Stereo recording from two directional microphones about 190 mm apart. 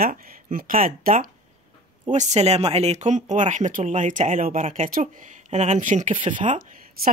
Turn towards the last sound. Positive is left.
turn(degrees=-50)  # may be behind; listen again after turning